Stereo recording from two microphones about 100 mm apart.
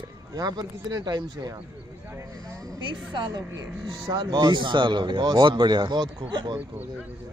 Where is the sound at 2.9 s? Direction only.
50° right (ahead or behind).